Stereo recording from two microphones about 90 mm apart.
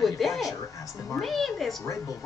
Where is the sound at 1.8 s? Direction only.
40° left (ahead or behind).